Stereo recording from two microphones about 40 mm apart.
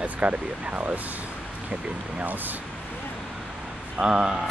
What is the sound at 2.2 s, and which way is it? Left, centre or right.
Speech, right.